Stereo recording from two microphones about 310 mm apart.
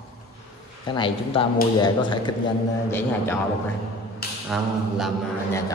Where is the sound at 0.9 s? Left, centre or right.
Centre.